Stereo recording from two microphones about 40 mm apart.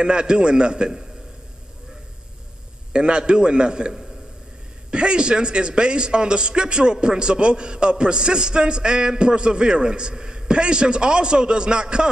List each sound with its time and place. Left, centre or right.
0.0 s a man's voice: right
2.9 s a man's voice: right